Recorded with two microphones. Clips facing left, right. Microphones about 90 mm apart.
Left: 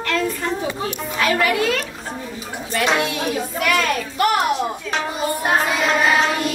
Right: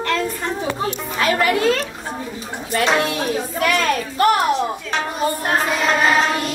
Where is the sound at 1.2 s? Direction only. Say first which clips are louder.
Right 1 dB; 30° right (ahead or behind).